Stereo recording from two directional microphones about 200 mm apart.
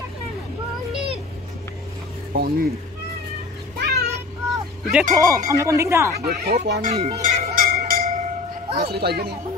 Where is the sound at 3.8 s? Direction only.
50° right (ahead or behind).